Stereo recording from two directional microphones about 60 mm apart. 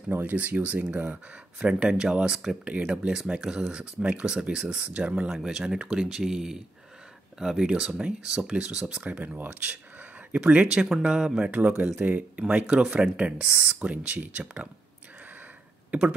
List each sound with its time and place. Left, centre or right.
0.1 s speech: right
15.9 s speech: centre